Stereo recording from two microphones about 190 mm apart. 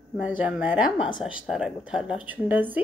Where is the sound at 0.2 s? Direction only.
5° right (ahead or behind).